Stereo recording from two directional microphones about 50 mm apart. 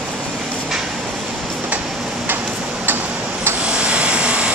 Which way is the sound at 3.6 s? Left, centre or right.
Right.